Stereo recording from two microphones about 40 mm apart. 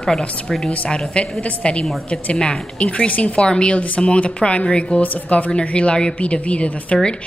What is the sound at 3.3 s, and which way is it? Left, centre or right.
Speech, left.